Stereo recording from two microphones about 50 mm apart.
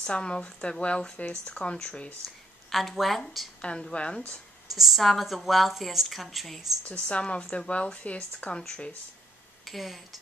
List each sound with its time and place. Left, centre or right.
0.0 s speech: left
2.2 s a sound: centre
3.6 s speech: left
4.6 s a woman's voice: centre
6.8 s speech: left
9.7 s a woman's voice: centre